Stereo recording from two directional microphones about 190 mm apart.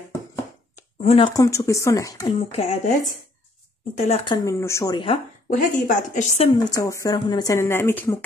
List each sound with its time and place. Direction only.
1.0 s speech: 25° left (ahead or behind)
2.3 s speech: 35° left (ahead or behind)
4.1 s speech: 25° left (ahead or behind)
4.5 s speech: 15° left (ahead or behind)
5.5 s a woman's voice: 45° left (ahead or behind)
6.6 s speech: 20° left (ahead or behind)